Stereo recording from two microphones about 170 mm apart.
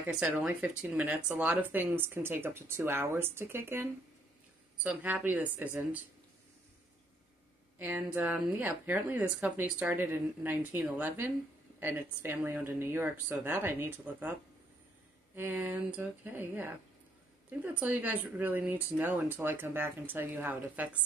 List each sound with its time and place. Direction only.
0.0 s speech: 5° right (ahead or behind)
7.8 s speech: 10° right (ahead or behind)
15.3 s speech: 10° right (ahead or behind)